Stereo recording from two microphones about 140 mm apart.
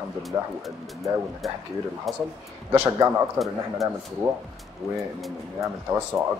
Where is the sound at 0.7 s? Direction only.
Centre (ahead or behind).